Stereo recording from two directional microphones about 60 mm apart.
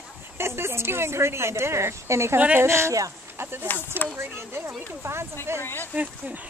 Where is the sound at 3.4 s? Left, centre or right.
Right.